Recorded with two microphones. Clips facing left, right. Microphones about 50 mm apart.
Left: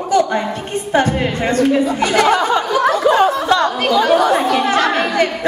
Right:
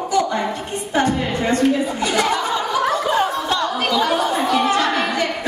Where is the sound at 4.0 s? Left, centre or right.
Left.